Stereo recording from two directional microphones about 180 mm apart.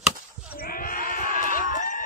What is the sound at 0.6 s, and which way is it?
Sheep, 55° left (ahead or behind).